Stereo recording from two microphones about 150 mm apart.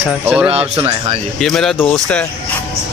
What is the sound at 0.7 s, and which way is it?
Speech, 30° right (ahead or behind).